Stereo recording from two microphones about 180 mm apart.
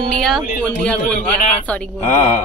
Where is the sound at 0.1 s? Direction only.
5° left (ahead or behind).